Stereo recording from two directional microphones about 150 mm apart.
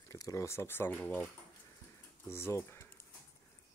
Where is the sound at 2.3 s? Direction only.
15° left (ahead or behind).